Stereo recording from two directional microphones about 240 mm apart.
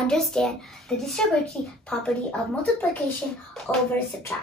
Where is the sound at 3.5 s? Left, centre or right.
Centre.